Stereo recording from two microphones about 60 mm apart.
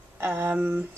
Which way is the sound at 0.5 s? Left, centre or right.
Right.